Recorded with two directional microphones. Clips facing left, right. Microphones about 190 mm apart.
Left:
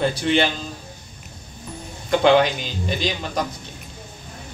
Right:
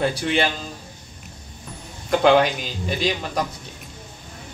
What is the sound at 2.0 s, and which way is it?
Speech, centre (ahead or behind).